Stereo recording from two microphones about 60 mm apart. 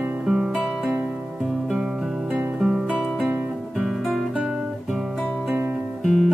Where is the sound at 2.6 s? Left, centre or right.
Centre.